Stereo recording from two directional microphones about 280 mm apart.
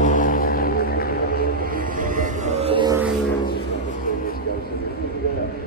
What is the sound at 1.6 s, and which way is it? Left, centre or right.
Music, right.